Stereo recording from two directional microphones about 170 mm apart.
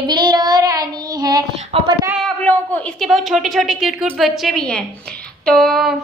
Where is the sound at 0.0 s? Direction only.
25° right (ahead or behind).